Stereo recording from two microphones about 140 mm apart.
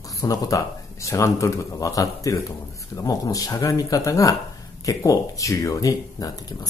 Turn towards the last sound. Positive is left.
turn(degrees=25)  # may be behind; listen again after turning